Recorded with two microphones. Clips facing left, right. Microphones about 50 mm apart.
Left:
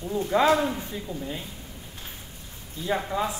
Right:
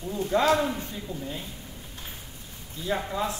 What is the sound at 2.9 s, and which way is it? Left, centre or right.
Speech, centre.